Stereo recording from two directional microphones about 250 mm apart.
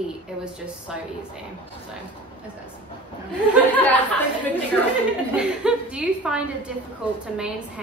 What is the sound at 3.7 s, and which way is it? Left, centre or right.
Speech, centre.